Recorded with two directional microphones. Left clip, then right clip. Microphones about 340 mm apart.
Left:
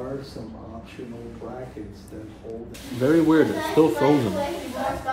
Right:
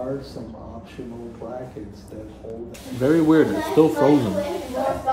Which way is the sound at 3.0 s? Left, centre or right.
Centre.